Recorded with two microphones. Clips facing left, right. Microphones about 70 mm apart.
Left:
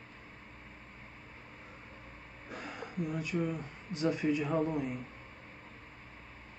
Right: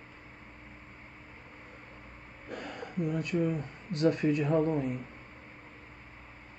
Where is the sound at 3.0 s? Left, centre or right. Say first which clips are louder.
Right 5 dB; right.